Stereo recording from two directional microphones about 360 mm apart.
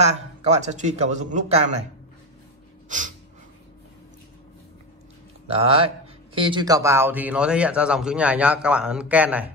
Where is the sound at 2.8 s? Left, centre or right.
Right.